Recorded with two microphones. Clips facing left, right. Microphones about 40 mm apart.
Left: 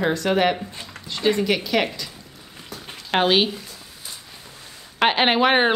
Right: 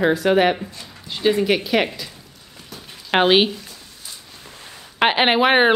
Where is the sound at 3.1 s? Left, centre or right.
Centre.